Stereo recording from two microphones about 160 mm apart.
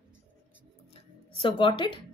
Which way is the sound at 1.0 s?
35° left (ahead or behind).